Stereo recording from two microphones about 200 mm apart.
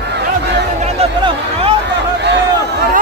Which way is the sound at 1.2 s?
30° right (ahead or behind).